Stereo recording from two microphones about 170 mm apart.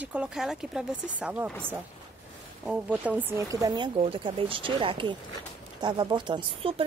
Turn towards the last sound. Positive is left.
turn(degrees=-35)  # may be behind; listen again after turning